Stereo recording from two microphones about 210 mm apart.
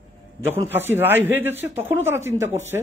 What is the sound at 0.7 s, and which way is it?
A woman's voice, 10° right (ahead or behind).